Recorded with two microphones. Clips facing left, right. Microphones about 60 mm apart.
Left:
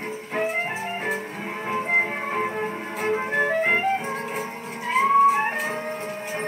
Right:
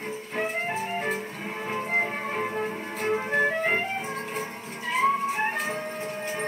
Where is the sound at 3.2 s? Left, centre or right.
Left.